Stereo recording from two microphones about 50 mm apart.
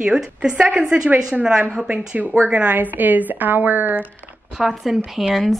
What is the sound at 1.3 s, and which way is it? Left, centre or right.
Speech, centre.